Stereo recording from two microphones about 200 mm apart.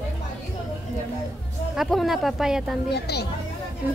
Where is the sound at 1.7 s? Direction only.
Centre (ahead or behind).